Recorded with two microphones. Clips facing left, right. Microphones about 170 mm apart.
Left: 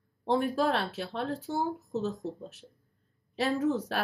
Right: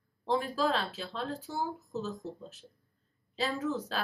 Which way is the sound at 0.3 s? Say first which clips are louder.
Left 3 dB; 60° left (ahead or behind).